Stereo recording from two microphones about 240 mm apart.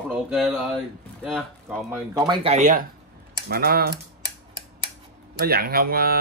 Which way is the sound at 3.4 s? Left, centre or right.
Right.